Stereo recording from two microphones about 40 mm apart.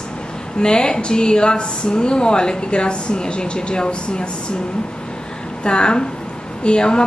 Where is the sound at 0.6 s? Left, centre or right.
Left.